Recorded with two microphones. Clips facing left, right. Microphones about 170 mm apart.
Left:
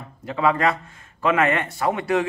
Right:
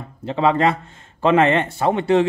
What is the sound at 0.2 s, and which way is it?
Speech, 25° right (ahead or behind).